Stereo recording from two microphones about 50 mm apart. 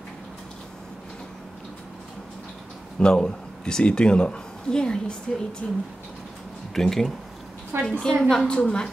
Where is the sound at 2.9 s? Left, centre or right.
Centre.